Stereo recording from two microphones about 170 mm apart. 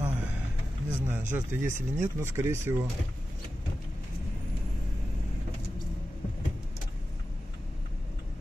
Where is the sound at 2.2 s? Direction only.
15° right (ahead or behind).